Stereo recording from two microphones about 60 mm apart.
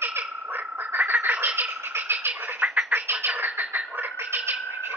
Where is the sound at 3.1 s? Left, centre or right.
Right.